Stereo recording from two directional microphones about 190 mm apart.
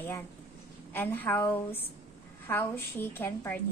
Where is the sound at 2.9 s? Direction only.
10° left (ahead or behind).